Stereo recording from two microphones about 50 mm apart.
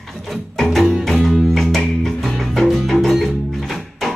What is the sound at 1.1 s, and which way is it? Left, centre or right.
Music, centre.